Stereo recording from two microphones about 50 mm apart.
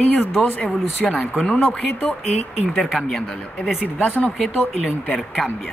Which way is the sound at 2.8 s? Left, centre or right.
Centre.